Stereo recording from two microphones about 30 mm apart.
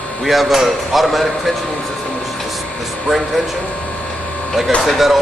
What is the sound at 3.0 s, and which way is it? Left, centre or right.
Speech, centre.